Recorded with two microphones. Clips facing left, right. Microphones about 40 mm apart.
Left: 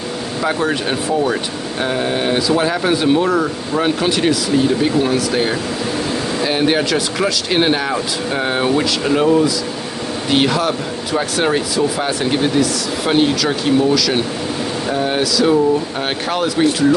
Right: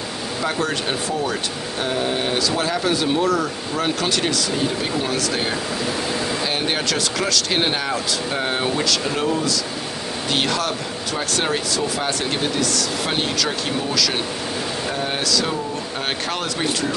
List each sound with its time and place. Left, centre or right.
0.4 s speech: centre
10.3 s speech: centre